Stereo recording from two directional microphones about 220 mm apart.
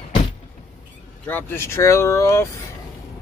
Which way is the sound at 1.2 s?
10° left (ahead or behind).